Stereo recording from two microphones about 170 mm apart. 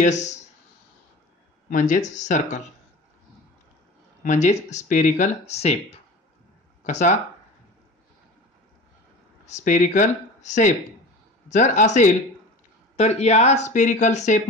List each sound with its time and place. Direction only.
0.0 s speech: 45° left (ahead or behind)
1.7 s speech: 50° left (ahead or behind)
4.2 s speech: 45° left (ahead or behind)
9.5 s speech: 45° left (ahead or behind)